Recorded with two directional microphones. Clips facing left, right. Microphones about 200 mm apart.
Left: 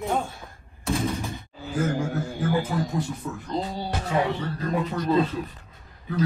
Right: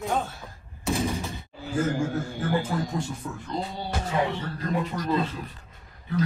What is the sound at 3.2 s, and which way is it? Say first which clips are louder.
Speech: left 2 dB; 5° left (ahead or behind).